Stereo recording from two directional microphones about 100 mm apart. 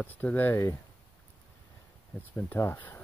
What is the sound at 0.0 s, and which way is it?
Speech, 20° left (ahead or behind).